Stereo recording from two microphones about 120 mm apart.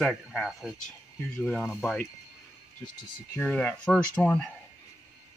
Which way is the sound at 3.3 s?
15° left (ahead or behind).